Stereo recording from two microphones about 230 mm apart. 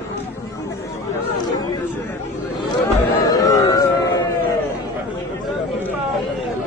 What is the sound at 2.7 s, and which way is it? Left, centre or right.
Chatter, centre.